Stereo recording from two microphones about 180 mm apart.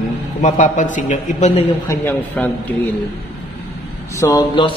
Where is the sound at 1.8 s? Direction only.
10° left (ahead or behind).